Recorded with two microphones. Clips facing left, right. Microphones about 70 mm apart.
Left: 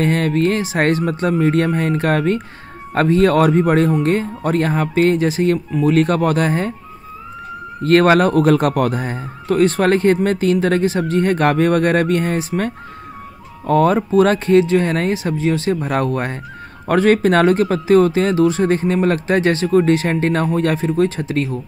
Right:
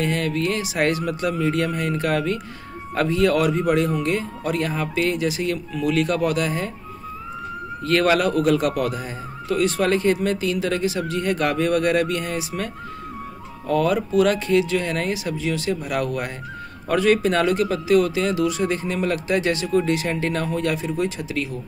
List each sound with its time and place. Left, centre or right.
0.0 s a man's voice: left
7.8 s a man's voice: left